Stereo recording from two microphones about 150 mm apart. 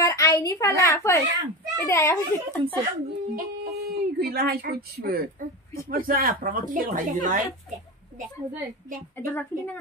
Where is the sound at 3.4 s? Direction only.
90° right.